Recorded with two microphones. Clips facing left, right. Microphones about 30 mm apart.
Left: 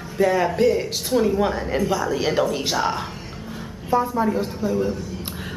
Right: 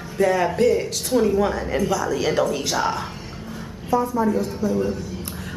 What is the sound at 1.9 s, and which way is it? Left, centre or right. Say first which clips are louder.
A woman's voice: even; centre.